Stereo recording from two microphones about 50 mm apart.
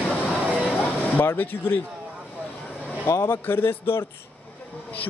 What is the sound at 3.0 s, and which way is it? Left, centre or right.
Speech, left.